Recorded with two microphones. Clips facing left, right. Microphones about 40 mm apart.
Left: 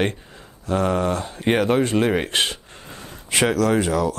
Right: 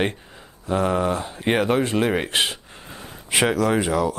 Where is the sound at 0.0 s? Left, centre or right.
Centre.